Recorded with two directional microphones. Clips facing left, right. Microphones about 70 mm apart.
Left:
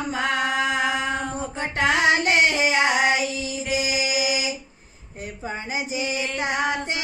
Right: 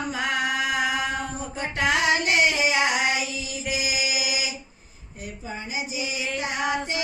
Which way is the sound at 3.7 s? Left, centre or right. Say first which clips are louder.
Left 3 dB; left.